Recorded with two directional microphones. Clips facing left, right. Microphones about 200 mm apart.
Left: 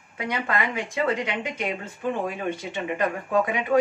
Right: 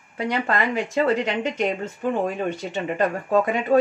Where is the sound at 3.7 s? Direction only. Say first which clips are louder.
Right 3 dB; 30° right (ahead or behind).